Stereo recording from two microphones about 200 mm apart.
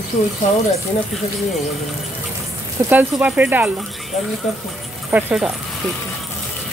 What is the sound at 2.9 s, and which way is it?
Speech, 10° right (ahead or behind).